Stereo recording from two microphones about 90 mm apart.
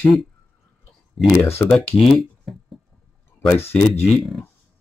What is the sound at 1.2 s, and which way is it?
Speech, centre (ahead or behind).